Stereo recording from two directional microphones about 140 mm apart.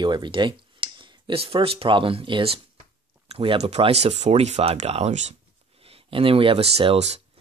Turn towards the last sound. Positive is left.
turn(degrees=-45)  # may be behind; listen again after turning